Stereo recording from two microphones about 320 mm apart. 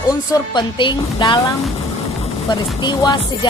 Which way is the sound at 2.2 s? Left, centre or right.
Centre.